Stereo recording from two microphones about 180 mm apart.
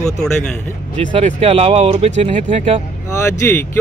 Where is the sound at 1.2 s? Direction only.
35° right (ahead or behind).